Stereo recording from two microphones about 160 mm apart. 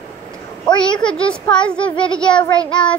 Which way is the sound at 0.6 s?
30° left (ahead or behind).